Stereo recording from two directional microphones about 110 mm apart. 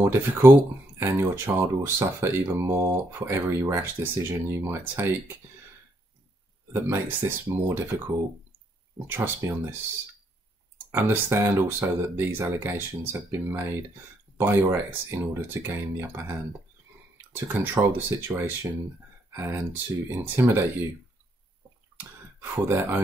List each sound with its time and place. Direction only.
0.0 s speech: 25° right (ahead or behind)
6.7 s speech: 20° right (ahead or behind)
9.0 s speech: 20° right (ahead or behind)
10.9 s speech: 20° right (ahead or behind)
17.5 s speech: 20° right (ahead or behind)
21.9 s a sound: 20° right (ahead or behind)